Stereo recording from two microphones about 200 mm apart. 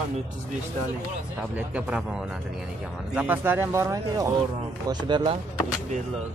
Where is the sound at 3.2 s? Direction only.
10° right (ahead or behind).